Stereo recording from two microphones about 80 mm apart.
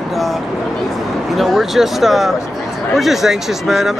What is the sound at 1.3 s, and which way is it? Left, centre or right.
Speech, centre.